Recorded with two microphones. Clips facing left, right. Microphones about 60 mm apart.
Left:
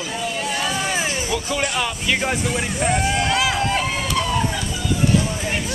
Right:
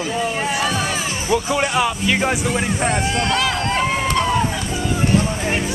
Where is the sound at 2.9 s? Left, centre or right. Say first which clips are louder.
Even; centre.